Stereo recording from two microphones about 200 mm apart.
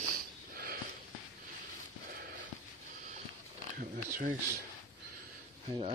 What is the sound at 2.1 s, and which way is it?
Sniff, 55° right (ahead or behind).